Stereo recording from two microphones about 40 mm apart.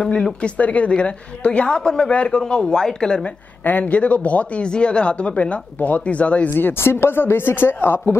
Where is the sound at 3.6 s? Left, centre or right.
Left.